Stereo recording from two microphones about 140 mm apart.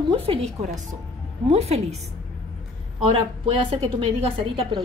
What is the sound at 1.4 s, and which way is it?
Speech, 50° right (ahead or behind).